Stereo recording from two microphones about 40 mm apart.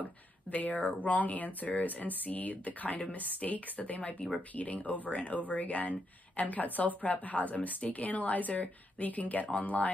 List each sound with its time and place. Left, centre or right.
0.0 s a woman's voice: left